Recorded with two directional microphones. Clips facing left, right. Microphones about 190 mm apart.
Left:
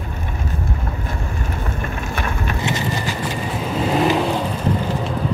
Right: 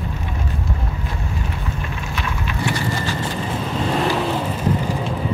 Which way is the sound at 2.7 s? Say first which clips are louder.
Right 1 dB; 20° left (ahead or behind).